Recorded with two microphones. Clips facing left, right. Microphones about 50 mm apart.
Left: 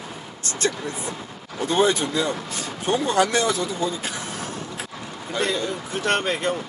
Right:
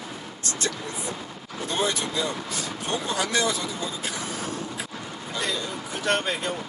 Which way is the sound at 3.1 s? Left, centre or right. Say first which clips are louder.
Left 4 dB; left.